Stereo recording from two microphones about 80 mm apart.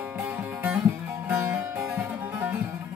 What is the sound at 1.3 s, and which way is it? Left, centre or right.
Music, right.